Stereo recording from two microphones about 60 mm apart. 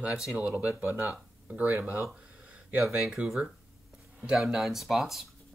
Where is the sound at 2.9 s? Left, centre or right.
Centre.